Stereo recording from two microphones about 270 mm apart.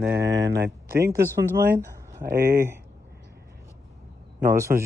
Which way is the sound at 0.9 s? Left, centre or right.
Right.